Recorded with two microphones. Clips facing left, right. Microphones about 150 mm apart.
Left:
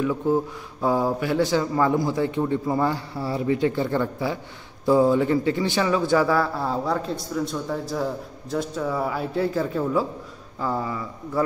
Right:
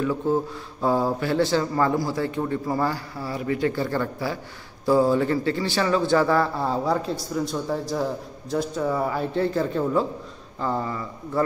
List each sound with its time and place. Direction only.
0.3 s a man's voice: 10° left (ahead or behind)